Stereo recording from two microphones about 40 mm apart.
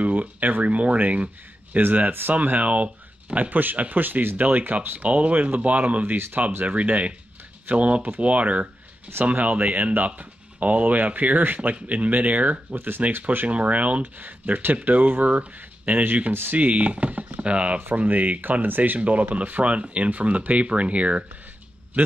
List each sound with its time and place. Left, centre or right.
0.0 s speech: right
1.8 s speech: right
2.4 s speech: right
4.4 s speech: right
6.1 s speech: right
6.6 s speech: right
12.7 s speech: right
13.5 s speech: right
14.2 s speech: right
17.4 s speech: right
17.9 s speech: right
18.9 s speech: right
19.6 s speech: right